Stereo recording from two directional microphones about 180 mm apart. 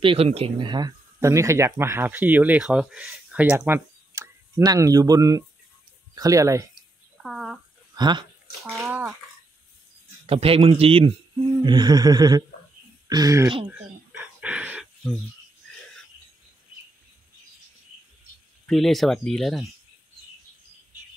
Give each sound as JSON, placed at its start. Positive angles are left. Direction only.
{"t": 0.0, "sound": "speech", "side_deg": -30}
{"t": 6.7, "sound": "a sound", "side_deg": 0}
{"t": 7.9, "sound": "speech", "side_deg": -25}
{"t": 8.6, "sound": "speech", "side_deg": 0}
{"t": 10.2, "sound": "a man's voice", "side_deg": -30}
{"t": 11.6, "sound": "music", "side_deg": -25}
{"t": 13.7, "sound": "a sound", "side_deg": -10}
{"t": 18.7, "sound": "speech", "side_deg": 0}